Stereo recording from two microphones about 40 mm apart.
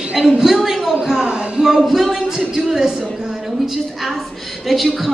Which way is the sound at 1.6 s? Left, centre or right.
Centre.